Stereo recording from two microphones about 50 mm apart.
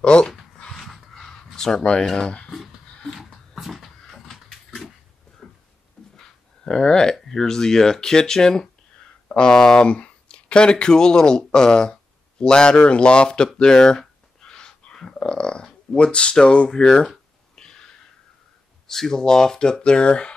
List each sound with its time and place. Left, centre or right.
0.0 s speech: left
0.7 s a sound: centre
2.1 s speech: centre
3.1 s dog: centre
4.0 s cupboard open or close: centre
6.1 s speech: centre
17.6 s a sound: centre
18.9 s speech: centre